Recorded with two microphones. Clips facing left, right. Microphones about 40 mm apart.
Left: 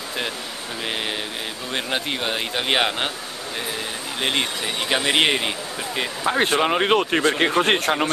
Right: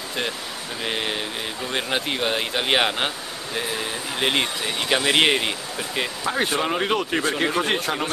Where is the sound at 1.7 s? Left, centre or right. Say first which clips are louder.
Even; centre.